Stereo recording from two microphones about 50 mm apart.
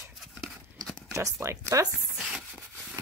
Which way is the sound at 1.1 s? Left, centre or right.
Right.